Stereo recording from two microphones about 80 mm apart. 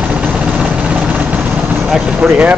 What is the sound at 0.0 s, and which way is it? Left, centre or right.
Vehicle, centre.